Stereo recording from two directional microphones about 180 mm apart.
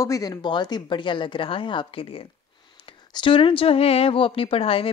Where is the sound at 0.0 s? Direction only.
20° left (ahead or behind).